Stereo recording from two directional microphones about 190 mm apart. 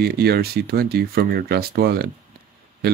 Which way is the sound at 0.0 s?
55° right (ahead or behind).